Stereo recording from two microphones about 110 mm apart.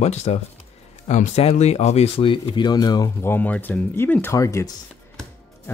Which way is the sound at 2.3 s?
45° left (ahead or behind).